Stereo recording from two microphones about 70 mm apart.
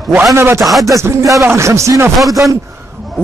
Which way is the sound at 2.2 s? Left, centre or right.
Centre.